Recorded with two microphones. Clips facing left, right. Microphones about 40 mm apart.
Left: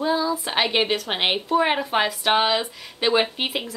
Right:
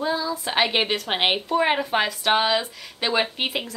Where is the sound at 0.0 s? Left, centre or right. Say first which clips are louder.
Left 3 dB; centre.